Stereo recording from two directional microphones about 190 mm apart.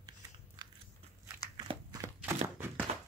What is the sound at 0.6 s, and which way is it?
Biting, 20° right (ahead or behind).